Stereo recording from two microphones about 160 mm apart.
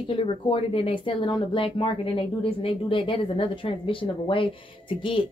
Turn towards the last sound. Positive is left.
turn(degrees=30)  # may be behind; listen again after turning